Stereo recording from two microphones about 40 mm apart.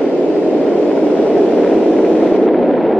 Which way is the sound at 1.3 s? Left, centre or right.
Centre.